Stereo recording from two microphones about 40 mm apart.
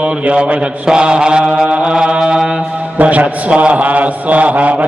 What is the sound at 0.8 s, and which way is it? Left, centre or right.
Mantra, right.